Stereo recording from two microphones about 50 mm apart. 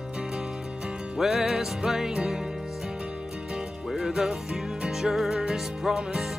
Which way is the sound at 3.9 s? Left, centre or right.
Centre.